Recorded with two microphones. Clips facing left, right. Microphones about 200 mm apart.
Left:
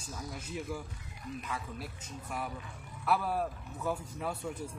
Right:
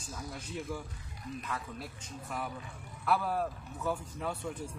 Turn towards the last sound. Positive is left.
turn(degrees=10)  # may be behind; listen again after turning